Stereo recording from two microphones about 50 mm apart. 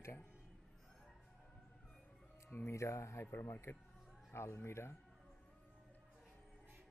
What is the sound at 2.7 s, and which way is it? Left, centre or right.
Speech, left.